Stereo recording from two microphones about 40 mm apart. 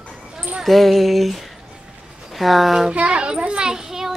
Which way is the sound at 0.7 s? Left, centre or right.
Centre.